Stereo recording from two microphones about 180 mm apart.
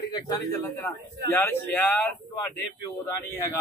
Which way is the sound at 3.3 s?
15° left (ahead or behind).